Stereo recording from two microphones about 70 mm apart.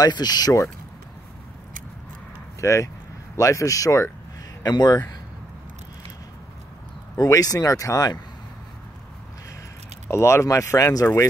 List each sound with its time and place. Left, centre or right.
0.0 s speech: left
2.6 s speech: left
4.6 s speech: left
7.2 s speech: left
10.0 s speech: left